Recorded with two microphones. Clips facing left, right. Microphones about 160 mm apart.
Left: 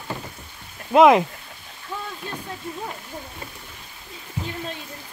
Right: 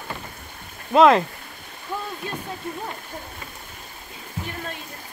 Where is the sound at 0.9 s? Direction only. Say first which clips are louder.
Left 1 dB; 15° left (ahead or behind).